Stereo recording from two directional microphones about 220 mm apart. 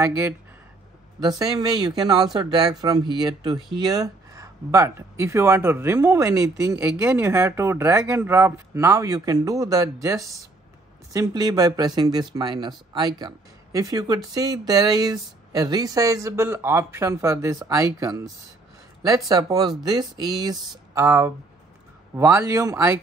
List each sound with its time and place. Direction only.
1.2 s speech: 15° right (ahead or behind)